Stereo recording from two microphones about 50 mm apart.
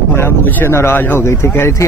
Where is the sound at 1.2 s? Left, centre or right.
Left.